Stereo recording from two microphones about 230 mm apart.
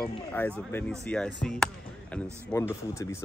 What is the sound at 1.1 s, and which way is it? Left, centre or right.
Speech, centre.